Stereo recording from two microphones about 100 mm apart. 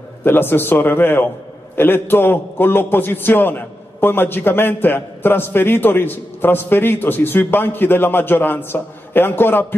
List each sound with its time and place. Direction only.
0.2 s a man's voice: 20° left (ahead or behind)